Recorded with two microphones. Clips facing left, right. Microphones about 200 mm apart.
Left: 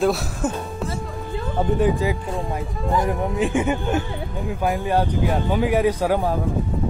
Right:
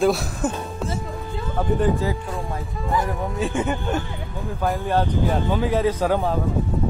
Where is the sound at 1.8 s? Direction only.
15° left (ahead or behind).